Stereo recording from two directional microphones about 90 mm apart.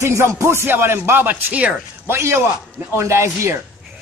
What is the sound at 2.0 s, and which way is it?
A man's voice, 30° right (ahead or behind).